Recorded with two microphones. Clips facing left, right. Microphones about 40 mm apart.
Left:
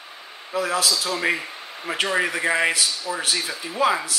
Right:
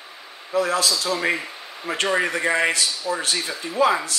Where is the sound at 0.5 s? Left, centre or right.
Centre.